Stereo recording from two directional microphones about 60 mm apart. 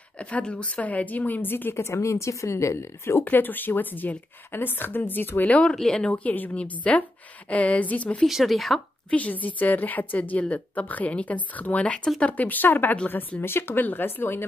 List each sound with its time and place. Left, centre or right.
0.2 s a woman's voice: centre; by 1.8 s left
1.8 s speech: left
3.3 s a woman's voice: left
5.5 s a woman's voice: left
6.1 s a woman's voice: left
8.3 s speech: centre
9.1 s a woman's voice: left